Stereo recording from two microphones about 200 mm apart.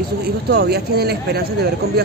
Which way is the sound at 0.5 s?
55° right (ahead or behind).